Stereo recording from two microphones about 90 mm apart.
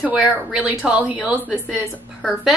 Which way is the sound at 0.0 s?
10° right (ahead or behind).